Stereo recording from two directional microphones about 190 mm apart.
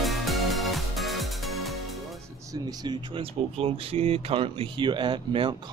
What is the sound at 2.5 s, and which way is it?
Speech, 20° right (ahead or behind).